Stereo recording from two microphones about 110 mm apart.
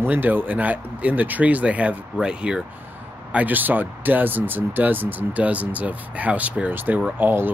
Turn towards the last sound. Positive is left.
turn(degrees=-20)  # may be behind; listen again after turning